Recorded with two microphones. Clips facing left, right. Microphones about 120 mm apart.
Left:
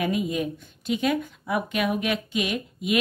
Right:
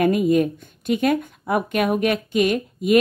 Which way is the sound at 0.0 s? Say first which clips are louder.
Right 8 dB; 50° right (ahead or behind).